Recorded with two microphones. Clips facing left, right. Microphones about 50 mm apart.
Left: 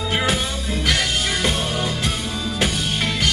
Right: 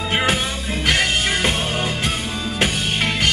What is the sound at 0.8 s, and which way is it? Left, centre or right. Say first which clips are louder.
Music: right 3 dB; right.